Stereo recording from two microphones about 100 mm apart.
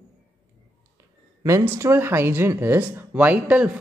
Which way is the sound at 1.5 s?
30° right (ahead or behind).